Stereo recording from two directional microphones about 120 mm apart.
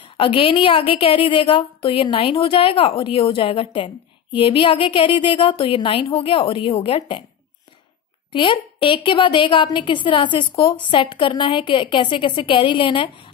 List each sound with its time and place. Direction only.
0.2 s a woman's voice: 45° left (ahead or behind)
8.3 s a woman's voice: 45° left (ahead or behind)